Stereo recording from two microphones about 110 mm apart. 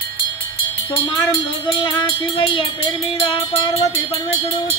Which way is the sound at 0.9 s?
50° left (ahead or behind).